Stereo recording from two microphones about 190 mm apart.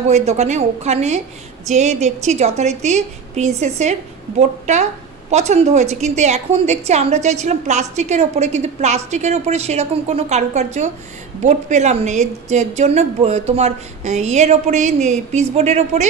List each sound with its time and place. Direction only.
0.1 s a woman's voice: 35° right (ahead or behind)